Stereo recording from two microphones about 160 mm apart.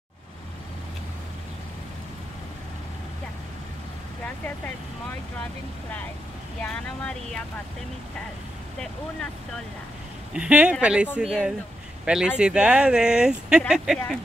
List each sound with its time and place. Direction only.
5.4 s speech: 10° left (ahead or behind)
8.7 s speech: 5° left (ahead or behind)
10.3 s speech: 5° right (ahead or behind)